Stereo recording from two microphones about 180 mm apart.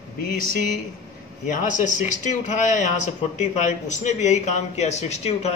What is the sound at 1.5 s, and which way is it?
A woman's voice, 45° left (ahead or behind).